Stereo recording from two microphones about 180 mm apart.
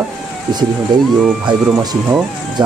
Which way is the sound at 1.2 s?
Centre (ahead or behind).